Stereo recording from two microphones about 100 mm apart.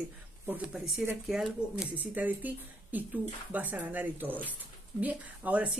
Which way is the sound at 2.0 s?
15° right (ahead or behind).